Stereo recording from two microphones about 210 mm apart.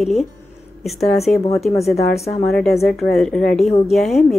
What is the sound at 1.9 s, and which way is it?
Speech, 30° left (ahead or behind).